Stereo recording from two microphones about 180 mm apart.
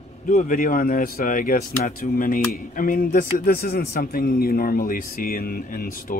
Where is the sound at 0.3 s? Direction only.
50° left (ahead or behind).